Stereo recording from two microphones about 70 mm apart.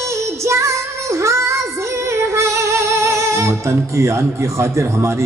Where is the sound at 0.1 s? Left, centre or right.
Right.